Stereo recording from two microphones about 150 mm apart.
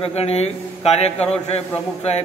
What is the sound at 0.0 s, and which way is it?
A man's voice, 45° left (ahead or behind).